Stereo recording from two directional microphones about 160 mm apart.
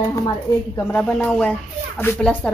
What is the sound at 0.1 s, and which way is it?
Speech, 20° left (ahead or behind).